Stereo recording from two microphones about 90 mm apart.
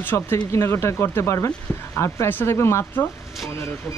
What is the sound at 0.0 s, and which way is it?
Speech, 25° left (ahead or behind).